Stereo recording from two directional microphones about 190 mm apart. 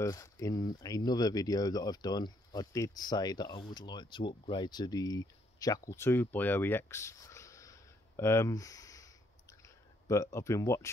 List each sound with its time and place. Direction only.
0.0 s speech: 15° left (ahead or behind)